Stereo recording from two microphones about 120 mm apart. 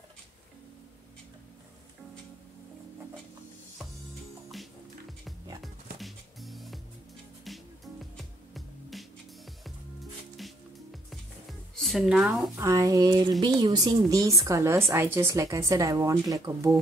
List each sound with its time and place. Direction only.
5.6 s music: centre (ahead or behind)
10.3 s music: centre (ahead or behind)
12.5 s a woman's voice: 25° right (ahead or behind)